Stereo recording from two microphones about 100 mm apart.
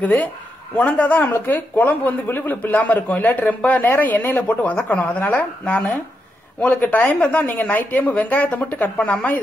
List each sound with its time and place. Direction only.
0.0 s speech: 15° left (ahead or behind)